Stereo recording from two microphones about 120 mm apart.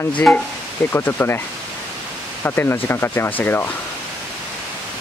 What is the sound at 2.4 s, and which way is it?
Speech, 20° left (ahead or behind).